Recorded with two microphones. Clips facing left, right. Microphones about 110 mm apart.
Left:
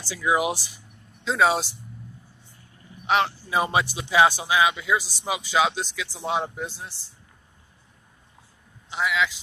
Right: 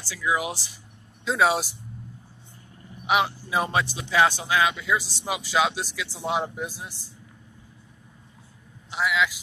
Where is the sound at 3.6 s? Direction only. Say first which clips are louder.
Left 2 dB; 10° left (ahead or behind); by 6.9 s 10° right (ahead or behind).